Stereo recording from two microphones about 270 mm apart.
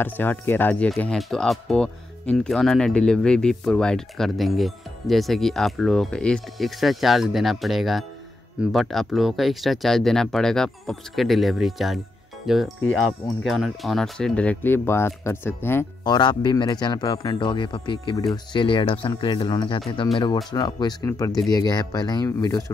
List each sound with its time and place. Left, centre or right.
0.0 s speech: centre